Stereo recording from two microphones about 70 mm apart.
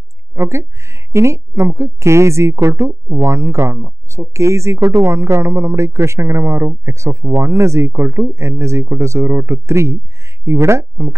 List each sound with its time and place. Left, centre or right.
0.3 s speech: right